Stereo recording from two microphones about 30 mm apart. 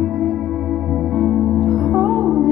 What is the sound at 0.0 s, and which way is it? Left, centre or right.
Music, centre.